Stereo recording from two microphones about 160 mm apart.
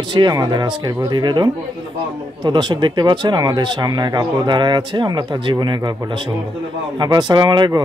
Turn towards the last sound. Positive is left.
turn(degrees=-25)  # may be behind; listen again after turning